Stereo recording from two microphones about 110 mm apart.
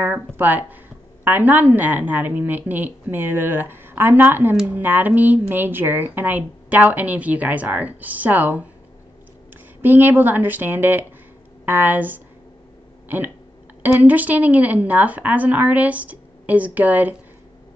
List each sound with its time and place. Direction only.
0.0 s speech: 20° right (ahead or behind)
9.8 s speech: 20° right (ahead or behind)
13.9 s speech: 15° right (ahead or behind)